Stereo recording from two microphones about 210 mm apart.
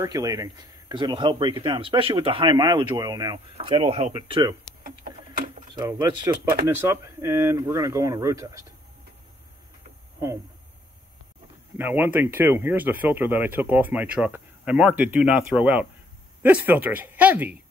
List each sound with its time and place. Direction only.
0.0 s speech: 15° right (ahead or behind)
5.8 s speech: 15° right (ahead or behind)
11.7 s speech: 10° right (ahead or behind)